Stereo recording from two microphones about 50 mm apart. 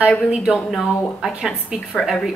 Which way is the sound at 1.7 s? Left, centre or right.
Right.